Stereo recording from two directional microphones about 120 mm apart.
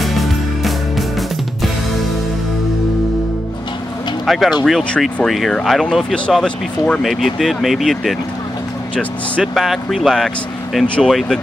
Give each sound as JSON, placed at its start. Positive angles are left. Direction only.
{"t": 0.0, "sound": "music", "side_deg": 0}
{"t": 4.3, "sound": "speech", "side_deg": 0}